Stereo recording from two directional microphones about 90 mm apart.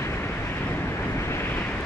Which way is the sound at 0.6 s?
25° left (ahead or behind).